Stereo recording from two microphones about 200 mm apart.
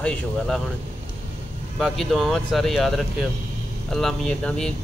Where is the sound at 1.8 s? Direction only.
Centre (ahead or behind).